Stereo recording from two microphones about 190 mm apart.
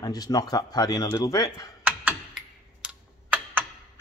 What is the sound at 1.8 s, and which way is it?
Computer keyboard, 5° right (ahead or behind).